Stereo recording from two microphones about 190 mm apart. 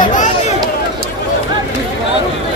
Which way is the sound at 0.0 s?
40° left (ahead or behind).